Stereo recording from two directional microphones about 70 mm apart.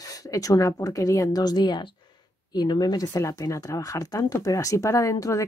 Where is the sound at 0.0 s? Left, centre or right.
Left.